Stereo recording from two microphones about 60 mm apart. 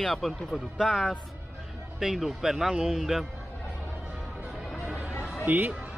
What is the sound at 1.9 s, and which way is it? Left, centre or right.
Speech, centre.